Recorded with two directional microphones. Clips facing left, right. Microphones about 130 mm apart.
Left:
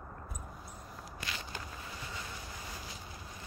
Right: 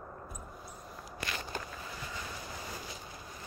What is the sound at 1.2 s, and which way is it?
Walk, 50° right (ahead or behind).